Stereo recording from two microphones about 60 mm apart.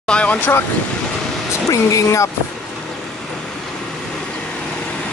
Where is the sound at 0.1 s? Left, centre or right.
Left.